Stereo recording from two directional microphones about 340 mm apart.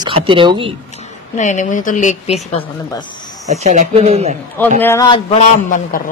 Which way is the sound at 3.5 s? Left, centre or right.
Centre.